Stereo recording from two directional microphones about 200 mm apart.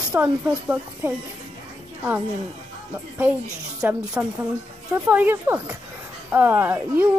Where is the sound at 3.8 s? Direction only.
5° right (ahead or behind).